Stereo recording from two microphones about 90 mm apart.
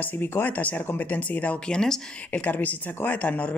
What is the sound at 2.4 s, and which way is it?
Speech, 20° left (ahead or behind).